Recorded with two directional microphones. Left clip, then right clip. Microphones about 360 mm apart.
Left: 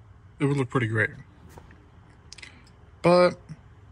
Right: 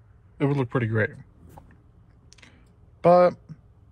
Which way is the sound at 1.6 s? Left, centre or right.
Centre.